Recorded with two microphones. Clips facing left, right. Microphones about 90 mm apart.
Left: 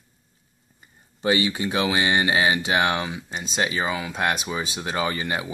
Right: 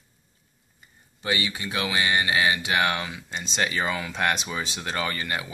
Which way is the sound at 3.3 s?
10° left (ahead or behind).